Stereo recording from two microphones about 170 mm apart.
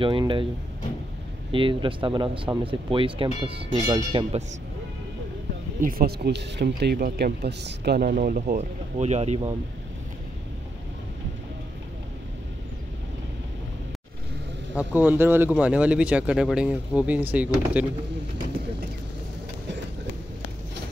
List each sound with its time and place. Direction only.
0.0 s speech: 30° right (ahead or behind)
1.5 s speech: 30° right (ahead or behind)
5.8 s speech: 55° right (ahead or behind)
8.5 s speech: 40° right (ahead or behind)
14.8 s speech: 10° right (ahead or behind)